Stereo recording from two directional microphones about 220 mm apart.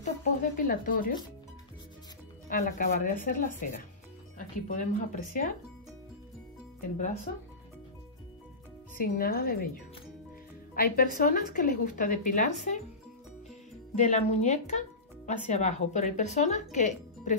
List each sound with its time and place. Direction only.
0.2 s speech: 40° left (ahead or behind)
2.5 s speech: 40° left (ahead or behind)
8.9 s speech: 40° left (ahead or behind)
10.7 s speech: 40° left (ahead or behind)
13.9 s speech: 30° left (ahead or behind)